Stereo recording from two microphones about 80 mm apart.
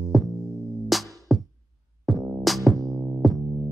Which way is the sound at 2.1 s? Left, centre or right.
Right.